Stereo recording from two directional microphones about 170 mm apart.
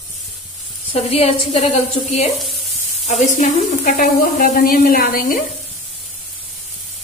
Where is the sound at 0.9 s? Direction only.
35° left (ahead or behind).